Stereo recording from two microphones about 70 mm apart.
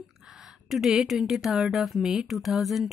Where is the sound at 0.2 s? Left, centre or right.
Centre.